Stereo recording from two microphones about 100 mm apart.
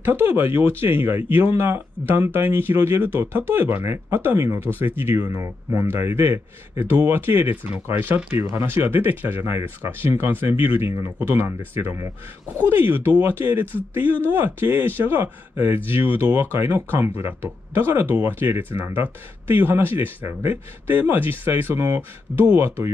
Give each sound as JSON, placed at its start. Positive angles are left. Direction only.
{"t": 0.0, "sound": "a man's voice", "side_deg": -20}